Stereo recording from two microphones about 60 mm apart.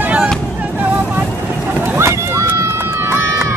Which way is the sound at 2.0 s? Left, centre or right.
Right.